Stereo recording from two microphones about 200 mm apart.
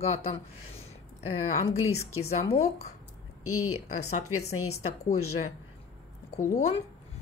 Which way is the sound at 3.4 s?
90° left.